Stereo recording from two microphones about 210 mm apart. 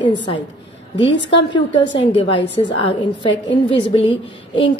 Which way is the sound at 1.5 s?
25° left (ahead or behind).